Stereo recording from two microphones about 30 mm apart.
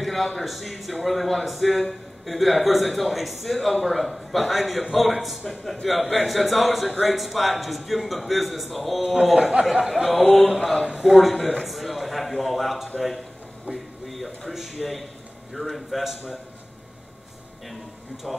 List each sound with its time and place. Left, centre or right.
0.0 s a man's voice: centre
5.4 s a man's voice: centre
5.9 s a man's voice: centre
9.0 s speech: centre
9.7 s speech: centre
11.1 s a man's voice: centre
11.6 s a sound: centre
12.9 s speech: left
13.7 s a sound: centre
14.8 s a man's voice: centre
18.3 s a man's voice: centre